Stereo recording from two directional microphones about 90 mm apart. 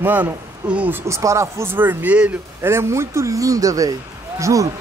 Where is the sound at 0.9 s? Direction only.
35° right (ahead or behind); by 2.4 s 15° right (ahead or behind).